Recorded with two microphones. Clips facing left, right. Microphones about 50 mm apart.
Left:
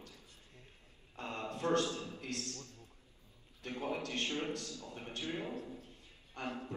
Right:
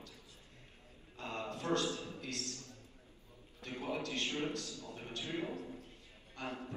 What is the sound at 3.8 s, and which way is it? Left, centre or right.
A man's voice, left.